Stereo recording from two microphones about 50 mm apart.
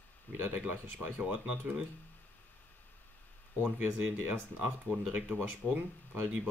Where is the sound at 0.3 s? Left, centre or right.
Right.